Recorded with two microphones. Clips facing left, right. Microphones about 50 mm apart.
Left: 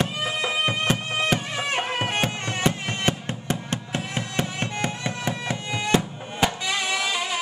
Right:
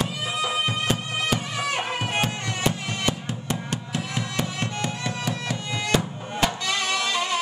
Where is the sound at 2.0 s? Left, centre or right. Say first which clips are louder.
Left 1 dB; left.